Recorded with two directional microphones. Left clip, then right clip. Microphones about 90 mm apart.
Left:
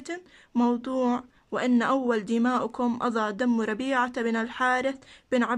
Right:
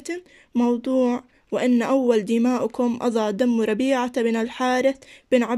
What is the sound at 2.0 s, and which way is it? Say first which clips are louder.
Speech: right 6 dB; 30° right (ahead or behind).